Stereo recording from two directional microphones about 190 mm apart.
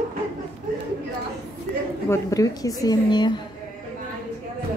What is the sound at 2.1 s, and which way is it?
A woman's voice, 20° left (ahead or behind).